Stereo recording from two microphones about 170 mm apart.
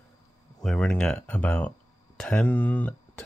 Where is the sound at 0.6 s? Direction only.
5° left (ahead or behind).